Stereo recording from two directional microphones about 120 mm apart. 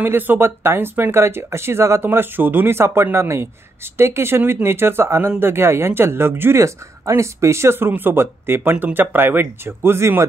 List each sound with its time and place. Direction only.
0.0 s speech: 15° right (ahead or behind)